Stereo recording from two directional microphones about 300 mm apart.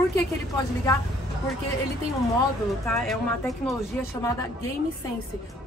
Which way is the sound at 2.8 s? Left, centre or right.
Centre.